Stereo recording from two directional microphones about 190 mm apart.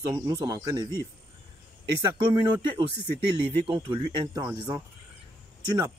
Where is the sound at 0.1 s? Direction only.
15° right (ahead or behind).